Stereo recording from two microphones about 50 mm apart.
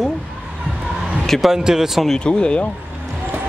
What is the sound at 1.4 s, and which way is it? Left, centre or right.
Speech, centre.